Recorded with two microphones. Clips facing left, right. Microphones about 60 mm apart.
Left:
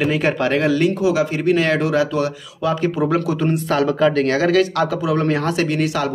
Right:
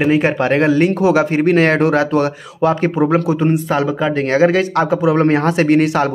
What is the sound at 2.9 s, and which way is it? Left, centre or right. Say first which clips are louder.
Speech: right 4 dB; right.